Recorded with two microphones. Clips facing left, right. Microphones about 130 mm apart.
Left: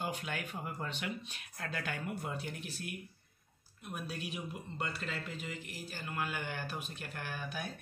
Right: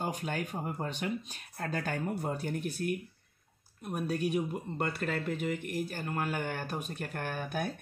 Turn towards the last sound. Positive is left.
turn(degrees=-50)  # may be behind; listen again after turning